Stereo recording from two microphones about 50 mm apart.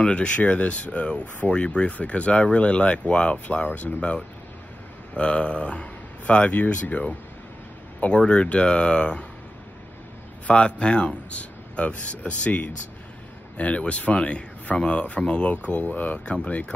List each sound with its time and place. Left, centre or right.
0.0 s speech: left
10.4 s speech: left